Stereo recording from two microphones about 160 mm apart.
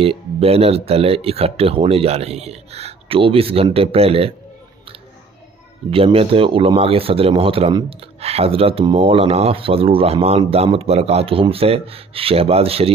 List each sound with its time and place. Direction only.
0.0 s speech: 35° right (ahead or behind)
5.9 s speech: 35° right (ahead or behind)